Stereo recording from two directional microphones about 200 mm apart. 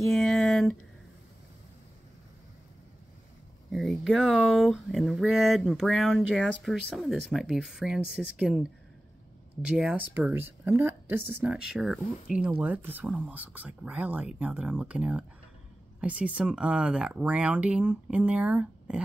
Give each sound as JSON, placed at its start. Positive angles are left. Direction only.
{"t": 0.0, "sound": "a sound", "side_deg": 0}
{"t": 3.7, "sound": "speech", "side_deg": 0}
{"t": 9.7, "sound": "speech", "side_deg": -5}